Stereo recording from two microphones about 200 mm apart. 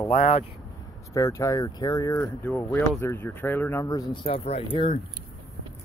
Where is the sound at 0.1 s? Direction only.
35° left (ahead or behind).